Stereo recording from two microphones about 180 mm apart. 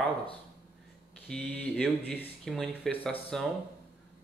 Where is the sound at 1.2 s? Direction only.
5° left (ahead or behind).